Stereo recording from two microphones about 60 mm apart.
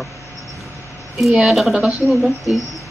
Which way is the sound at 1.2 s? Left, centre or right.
Centre.